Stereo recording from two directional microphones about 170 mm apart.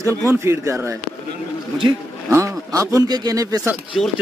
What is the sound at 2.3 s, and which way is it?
Speech, 15° right (ahead or behind).